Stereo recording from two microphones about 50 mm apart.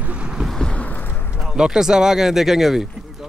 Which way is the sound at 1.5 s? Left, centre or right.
Centre.